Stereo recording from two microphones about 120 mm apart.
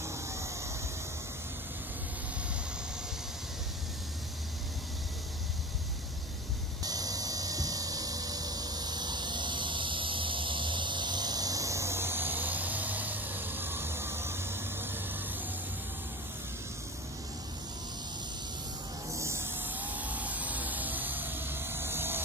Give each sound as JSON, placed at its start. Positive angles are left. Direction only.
{"t": 0.0, "sound": "emergency vehicle", "side_deg": -25}
{"t": 6.8, "sound": "a sound", "side_deg": -30}
{"t": 19.0, "sound": "vehicle", "side_deg": -25}